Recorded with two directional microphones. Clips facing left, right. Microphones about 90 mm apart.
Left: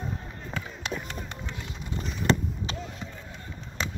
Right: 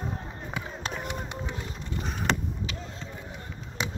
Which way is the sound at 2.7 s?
35° left (ahead or behind).